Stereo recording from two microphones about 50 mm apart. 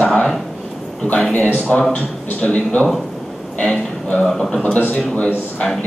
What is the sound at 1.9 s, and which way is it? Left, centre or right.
A man's voice, left.